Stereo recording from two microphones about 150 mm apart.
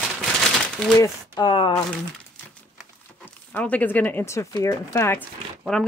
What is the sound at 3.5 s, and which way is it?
Speech, 10° left (ahead or behind).